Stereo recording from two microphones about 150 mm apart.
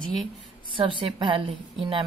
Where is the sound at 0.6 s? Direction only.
35° right (ahead or behind).